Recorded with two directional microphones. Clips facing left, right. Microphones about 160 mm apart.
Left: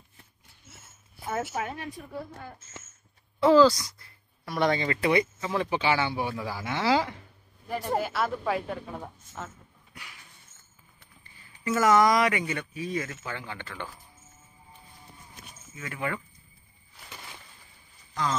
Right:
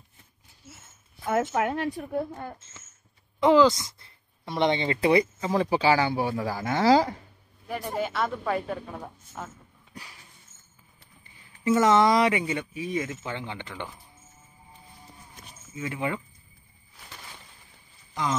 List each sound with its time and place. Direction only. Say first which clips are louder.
1.5 s speech: right 7 dB; 80° right
3.3 s speech: even; 20° right (ahead or behind); by 7.2 s 40° right (ahead or behind)
8.0 s a woman's voice: right 1 dB; 5° left (ahead or behind)
11.6 s speech: right 2 dB; 25° right (ahead or behind)
15.7 s speech: right 3 dB; 20° right (ahead or behind)
18.1 s speech: right 1 dB; 15° right (ahead or behind)